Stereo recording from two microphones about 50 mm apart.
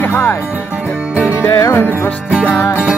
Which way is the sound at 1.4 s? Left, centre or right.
Left.